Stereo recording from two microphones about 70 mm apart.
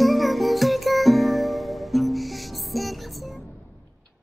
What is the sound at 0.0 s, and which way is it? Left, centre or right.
Music, centre.